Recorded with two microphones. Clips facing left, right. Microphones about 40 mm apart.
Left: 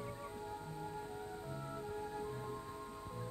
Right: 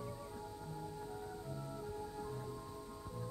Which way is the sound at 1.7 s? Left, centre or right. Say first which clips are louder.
Left 4 dB; left.